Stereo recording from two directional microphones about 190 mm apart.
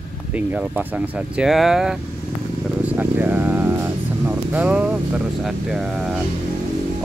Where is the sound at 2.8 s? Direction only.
10° right (ahead or behind).